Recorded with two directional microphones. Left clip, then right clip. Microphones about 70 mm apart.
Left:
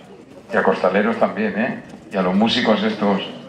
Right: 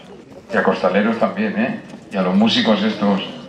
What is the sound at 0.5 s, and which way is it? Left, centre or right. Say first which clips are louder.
Speech: even; left.